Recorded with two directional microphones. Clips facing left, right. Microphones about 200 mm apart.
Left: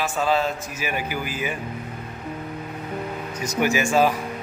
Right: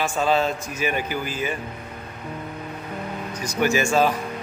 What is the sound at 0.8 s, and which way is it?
Speech, 10° left (ahead or behind).